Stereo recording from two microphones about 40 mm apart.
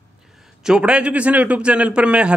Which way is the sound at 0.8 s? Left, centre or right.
Right.